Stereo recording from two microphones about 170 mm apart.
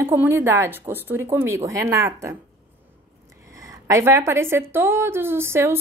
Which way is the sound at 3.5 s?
20° right (ahead or behind).